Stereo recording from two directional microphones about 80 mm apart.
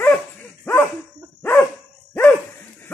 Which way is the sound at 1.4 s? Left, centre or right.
Left.